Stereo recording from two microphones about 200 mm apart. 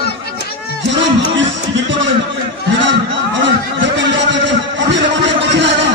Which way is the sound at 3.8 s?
65° right (ahead or behind).